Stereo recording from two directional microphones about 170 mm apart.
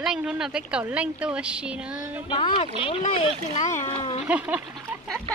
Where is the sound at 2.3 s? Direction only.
30° left (ahead or behind).